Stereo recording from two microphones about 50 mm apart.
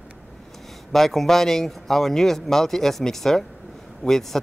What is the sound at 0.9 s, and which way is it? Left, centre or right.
Speech, centre.